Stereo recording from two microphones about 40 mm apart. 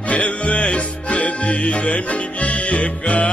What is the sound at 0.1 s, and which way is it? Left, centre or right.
Music, left.